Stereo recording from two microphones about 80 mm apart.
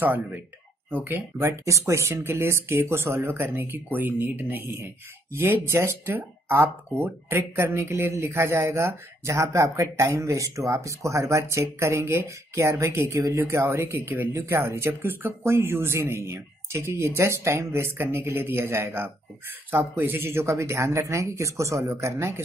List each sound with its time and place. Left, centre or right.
0.0 s speech: right
1.6 s speech: right